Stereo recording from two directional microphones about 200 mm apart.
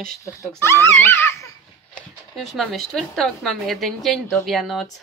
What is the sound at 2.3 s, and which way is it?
A woman's voice, centre (ahead or behind).